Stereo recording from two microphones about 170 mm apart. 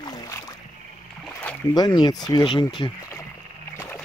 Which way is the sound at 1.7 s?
25° left (ahead or behind).